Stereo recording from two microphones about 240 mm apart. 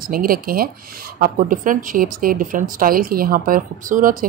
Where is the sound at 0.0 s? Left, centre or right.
Right.